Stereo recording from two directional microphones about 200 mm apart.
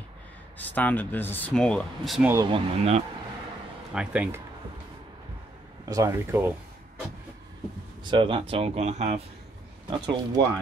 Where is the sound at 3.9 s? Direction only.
5° right (ahead or behind).